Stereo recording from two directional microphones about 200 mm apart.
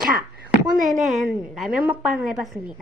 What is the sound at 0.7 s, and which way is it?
Speech, 40° right (ahead or behind).